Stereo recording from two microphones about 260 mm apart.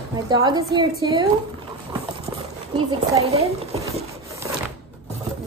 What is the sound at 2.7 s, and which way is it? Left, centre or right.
Speech, right.